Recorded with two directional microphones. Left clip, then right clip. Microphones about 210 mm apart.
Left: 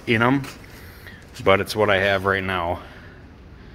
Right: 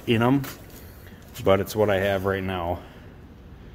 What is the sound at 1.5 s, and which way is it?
Speech, 20° right (ahead or behind).